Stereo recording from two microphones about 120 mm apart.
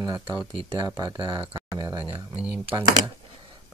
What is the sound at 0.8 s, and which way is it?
Speech, 35° right (ahead or behind).